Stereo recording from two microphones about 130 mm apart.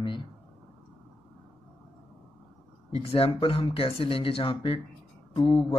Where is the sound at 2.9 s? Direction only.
50° left (ahead or behind).